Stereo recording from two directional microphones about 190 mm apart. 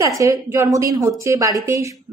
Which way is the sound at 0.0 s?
15° right (ahead or behind).